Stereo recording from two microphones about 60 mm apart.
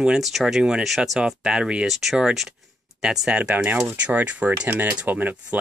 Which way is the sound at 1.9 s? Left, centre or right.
Centre.